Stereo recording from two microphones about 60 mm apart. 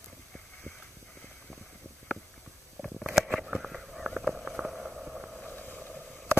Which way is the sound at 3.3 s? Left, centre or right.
Centre.